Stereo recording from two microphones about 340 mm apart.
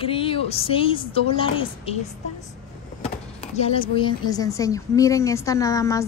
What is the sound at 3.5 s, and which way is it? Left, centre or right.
A woman's voice, centre.